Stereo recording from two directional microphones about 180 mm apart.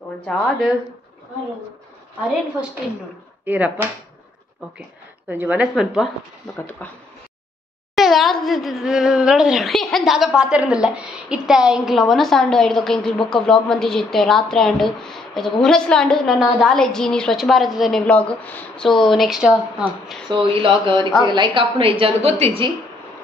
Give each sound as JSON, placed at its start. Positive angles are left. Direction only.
{"t": 0.3, "sound": "a woman's voice", "side_deg": 0}
{"t": 3.4, "sound": "a woman's voice", "side_deg": -10}
{"t": 5.3, "sound": "a woman's voice", "side_deg": -10}
{"t": 6.8, "sound": "speech", "side_deg": 10}
{"t": 7.9, "sound": "a woman's voice", "side_deg": 0}
{"t": 20.2, "sound": "a woman's voice", "side_deg": -30}